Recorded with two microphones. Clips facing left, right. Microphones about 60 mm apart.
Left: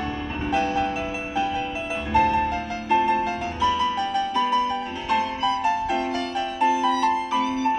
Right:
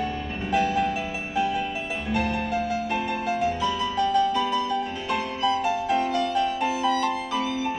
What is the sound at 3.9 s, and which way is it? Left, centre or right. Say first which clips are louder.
Music: right 2 dB; left.